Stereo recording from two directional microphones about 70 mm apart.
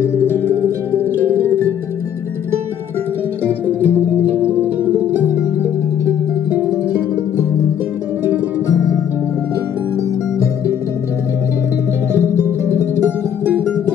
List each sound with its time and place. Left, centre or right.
0.0 s music: left
3.6 s music: right